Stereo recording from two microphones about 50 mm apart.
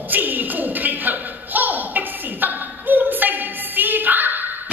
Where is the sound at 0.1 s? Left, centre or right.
Right.